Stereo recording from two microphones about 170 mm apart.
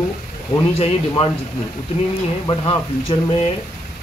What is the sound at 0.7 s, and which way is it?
Speech, 35° left (ahead or behind).